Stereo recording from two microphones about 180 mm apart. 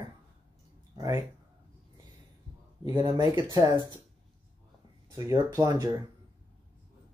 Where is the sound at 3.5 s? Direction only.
20° right (ahead or behind).